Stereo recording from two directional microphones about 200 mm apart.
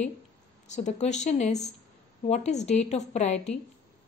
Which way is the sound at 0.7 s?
35° left (ahead or behind).